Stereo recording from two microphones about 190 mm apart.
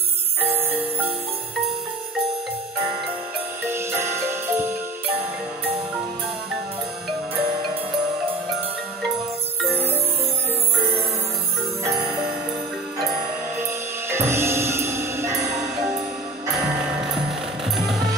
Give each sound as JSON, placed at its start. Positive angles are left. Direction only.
{"t": 0.6, "sound": "music", "side_deg": -10}
{"t": 3.6, "sound": "music", "side_deg": -10}
{"t": 9.7, "sound": "music", "side_deg": -30}
{"t": 12.0, "sound": "music", "side_deg": 0}
{"t": 13.6, "sound": "music", "side_deg": -10}
{"t": 17.0, "sound": "music", "side_deg": 0}